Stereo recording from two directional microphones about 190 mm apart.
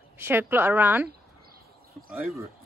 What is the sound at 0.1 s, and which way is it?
Speech, 10° right (ahead or behind).